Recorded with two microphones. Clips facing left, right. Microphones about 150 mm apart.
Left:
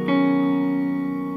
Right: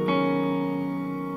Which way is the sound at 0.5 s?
5° right (ahead or behind).